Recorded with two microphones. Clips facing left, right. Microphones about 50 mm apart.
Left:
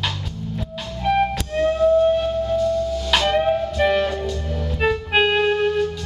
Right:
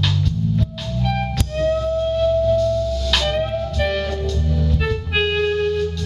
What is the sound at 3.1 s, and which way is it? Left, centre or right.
Music, centre.